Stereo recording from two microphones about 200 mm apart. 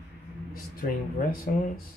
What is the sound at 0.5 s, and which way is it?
Speech, 45° left (ahead or behind).